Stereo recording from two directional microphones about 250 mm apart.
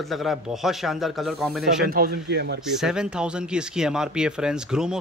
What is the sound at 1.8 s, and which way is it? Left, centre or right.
Speech, right.